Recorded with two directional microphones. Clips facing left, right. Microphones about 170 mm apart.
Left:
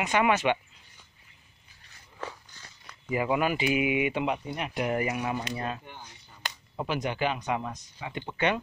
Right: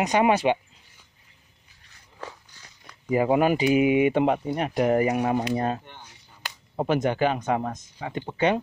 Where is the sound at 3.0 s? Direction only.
40° right (ahead or behind).